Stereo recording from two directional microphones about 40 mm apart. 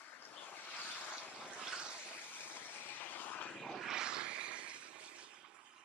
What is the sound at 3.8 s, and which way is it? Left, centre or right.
Vehicle, centre.